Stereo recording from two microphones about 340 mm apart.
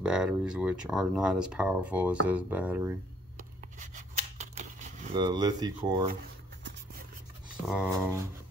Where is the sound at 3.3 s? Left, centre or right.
Right.